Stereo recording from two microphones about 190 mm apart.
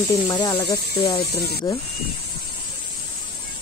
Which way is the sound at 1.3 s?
55° left (ahead or behind).